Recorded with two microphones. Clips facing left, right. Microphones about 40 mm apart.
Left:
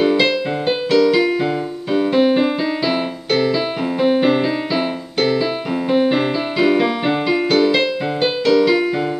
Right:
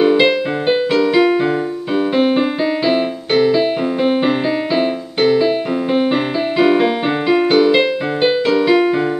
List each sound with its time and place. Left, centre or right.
0.0 s music: centre